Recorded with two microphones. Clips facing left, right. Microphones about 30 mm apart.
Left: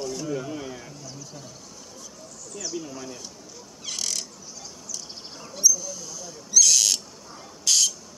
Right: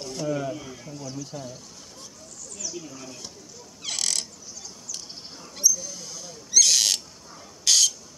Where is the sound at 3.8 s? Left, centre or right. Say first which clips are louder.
Right 2 dB; right.